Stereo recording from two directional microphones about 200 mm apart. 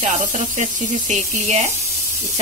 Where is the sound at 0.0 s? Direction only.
35° right (ahead or behind).